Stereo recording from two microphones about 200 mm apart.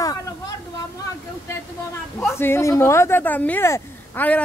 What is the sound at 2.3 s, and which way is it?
Speech, 10° left (ahead or behind).